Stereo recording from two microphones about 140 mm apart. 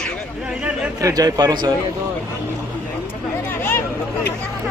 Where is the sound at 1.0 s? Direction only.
25° right (ahead or behind).